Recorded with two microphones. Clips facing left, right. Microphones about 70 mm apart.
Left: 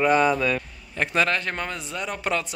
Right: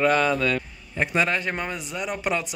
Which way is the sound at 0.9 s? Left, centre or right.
Centre.